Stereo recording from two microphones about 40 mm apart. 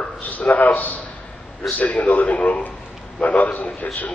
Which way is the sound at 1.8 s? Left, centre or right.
Left.